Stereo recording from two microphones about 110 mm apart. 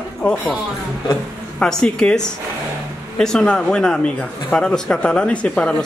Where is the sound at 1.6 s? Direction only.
5° left (ahead or behind).